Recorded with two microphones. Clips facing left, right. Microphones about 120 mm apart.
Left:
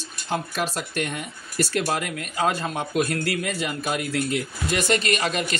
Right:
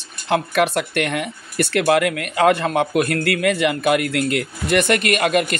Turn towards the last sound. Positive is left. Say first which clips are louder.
# right 6 dB
turn(degrees=-55)  # may be behind; listen again after turning